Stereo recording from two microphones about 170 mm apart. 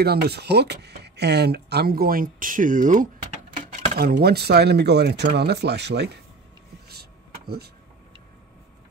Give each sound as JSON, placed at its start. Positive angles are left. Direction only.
{"t": 0.0, "sound": "speech", "side_deg": -70}
{"t": 3.9, "sound": "speech", "side_deg": -65}
{"t": 6.9, "sound": "a sound", "side_deg": -70}